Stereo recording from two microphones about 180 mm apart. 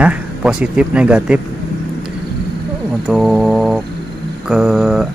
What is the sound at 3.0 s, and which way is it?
Speech, centre (ahead or behind).